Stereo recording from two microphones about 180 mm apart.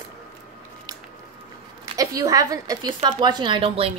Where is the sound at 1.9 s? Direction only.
20° right (ahead or behind).